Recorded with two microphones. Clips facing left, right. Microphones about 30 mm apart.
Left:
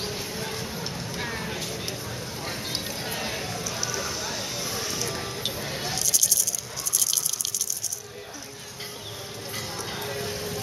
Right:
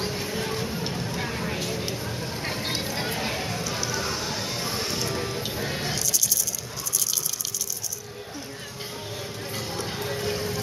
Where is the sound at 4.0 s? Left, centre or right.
Right.